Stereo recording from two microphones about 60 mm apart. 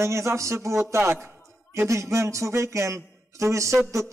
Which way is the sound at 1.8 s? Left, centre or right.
Right.